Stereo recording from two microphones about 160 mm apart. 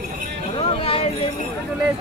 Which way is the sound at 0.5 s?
35° left (ahead or behind).